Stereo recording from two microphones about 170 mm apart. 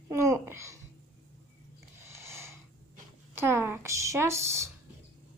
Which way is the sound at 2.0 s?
15° right (ahead or behind).